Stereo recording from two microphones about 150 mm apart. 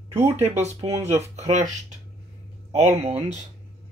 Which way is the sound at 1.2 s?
50° right (ahead or behind).